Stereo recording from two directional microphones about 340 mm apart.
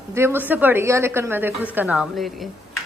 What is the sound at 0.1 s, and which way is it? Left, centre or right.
A woman's voice, centre.